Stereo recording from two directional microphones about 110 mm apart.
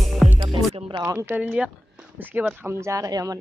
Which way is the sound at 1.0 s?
25° right (ahead or behind).